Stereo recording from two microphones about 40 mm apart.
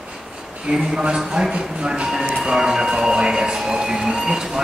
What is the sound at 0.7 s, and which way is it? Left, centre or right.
A man's voice, centre.